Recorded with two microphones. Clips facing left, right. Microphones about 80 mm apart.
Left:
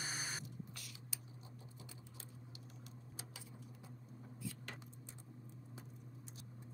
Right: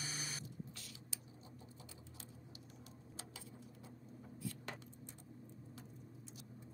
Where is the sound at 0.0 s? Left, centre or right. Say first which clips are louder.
Left 2 dB; left.